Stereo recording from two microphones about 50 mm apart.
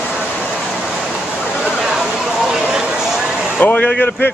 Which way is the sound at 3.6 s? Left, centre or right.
Left.